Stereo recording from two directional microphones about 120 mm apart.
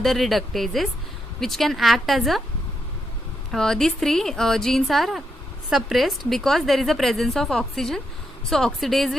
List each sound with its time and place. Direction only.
0.0 s a woman's voice: centre (ahead or behind)
3.5 s a woman's voice: 5° left (ahead or behind)